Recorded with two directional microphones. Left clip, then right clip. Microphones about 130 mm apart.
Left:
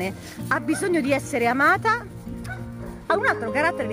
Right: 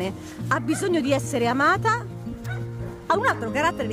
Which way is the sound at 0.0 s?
20° right (ahead or behind).